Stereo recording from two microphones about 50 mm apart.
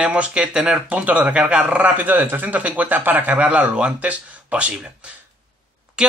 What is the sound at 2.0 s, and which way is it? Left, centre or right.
A man's voice, right.